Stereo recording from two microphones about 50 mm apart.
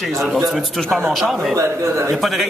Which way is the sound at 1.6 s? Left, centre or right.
Right.